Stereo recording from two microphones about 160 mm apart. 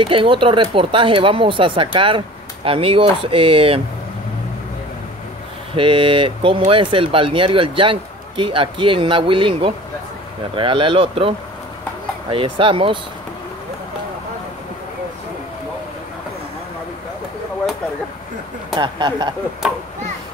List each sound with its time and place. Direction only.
0.0 s speech: 35° right (ahead or behind)
5.8 s speech: 35° right (ahead or behind)
18.8 s speech: 25° right (ahead or behind)